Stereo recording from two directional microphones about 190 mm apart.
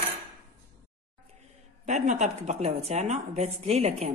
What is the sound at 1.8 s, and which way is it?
Speech, 40° right (ahead or behind).